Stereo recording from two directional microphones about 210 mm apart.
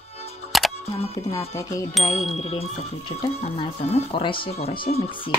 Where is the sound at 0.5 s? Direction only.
Centre (ahead or behind).